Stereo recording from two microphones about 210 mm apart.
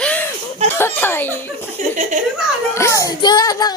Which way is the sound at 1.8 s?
35° right (ahead or behind).